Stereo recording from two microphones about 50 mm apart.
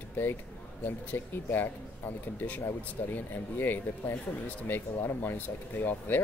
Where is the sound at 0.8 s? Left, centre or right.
Left.